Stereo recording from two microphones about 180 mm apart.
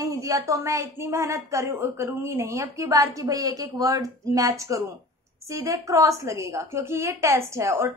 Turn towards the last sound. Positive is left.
turn(degrees=-15)  # may be behind; listen again after turning